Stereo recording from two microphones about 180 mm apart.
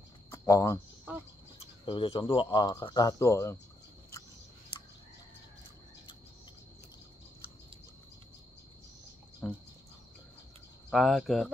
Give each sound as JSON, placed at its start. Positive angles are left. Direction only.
{"t": 0.3, "sound": "a sound", "side_deg": 20}
{"t": 1.6, "sound": "speech", "side_deg": 30}
{"t": 9.4, "sound": "speech", "side_deg": 10}
{"t": 10.9, "sound": "speech", "side_deg": 0}